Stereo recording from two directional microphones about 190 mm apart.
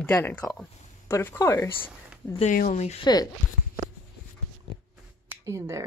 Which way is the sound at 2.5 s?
40° left (ahead or behind).